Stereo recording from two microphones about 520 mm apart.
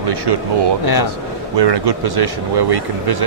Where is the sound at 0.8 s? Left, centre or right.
Left.